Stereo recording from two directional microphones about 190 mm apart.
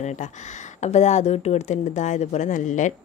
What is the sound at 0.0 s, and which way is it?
Speech, 40° left (ahead or behind).